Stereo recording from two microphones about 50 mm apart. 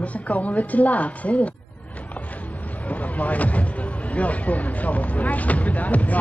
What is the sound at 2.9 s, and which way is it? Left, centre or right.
Speech, left.